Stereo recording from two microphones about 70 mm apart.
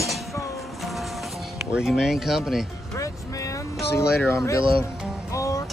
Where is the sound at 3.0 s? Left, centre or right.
Left.